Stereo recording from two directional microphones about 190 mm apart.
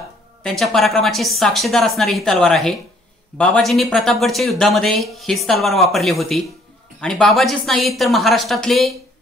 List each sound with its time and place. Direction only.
0.4 s speech: centre (ahead or behind)